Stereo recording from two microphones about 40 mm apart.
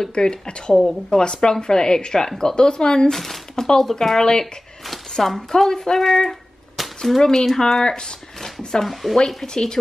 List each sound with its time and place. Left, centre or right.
0.0 s speech: centre
3.1 s speech: centre
9.5 s speech: centre